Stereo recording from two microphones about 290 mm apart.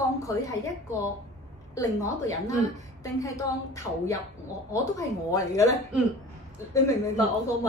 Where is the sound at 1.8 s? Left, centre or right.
Centre.